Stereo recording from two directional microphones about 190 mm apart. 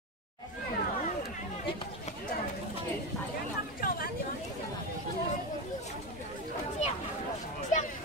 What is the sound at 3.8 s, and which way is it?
Vehicle, 50° left (ahead or behind).